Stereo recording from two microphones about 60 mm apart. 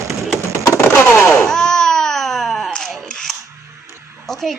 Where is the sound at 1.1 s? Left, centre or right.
Left.